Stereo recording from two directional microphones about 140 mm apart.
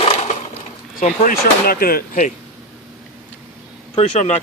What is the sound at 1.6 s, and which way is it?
Speech, 90° left.